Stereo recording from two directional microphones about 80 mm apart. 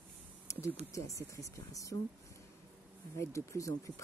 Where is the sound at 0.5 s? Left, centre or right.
Left.